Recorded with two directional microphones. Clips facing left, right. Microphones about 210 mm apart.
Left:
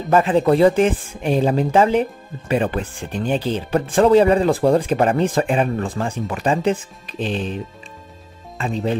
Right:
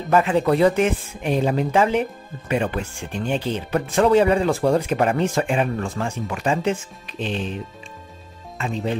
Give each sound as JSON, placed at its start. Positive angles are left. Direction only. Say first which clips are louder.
{"t": 0.1, "sound": "speech", "louder": "left 3 dB", "side_deg": 35}
{"t": 8.5, "sound": "speech", "louder": "left 3 dB", "side_deg": 35}